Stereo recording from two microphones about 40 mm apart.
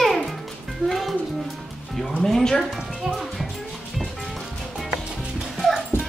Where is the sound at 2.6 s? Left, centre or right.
Centre.